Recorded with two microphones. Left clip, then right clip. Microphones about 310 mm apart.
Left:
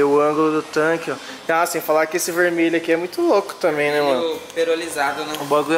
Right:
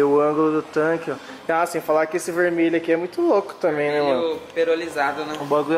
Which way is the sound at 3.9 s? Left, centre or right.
Centre.